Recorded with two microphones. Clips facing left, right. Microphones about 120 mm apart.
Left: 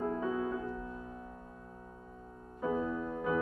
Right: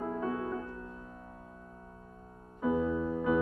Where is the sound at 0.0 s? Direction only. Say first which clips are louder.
Even; 5° right (ahead or behind).